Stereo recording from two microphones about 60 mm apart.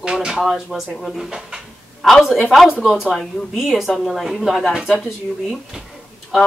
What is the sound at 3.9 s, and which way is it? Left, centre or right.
Speech, centre.